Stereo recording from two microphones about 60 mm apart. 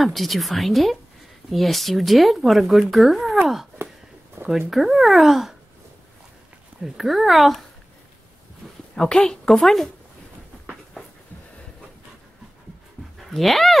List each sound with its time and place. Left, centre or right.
0.0 s speech: centre
6.8 s speech: centre
8.9 s a woman's voice: centre
13.2 s speech: centre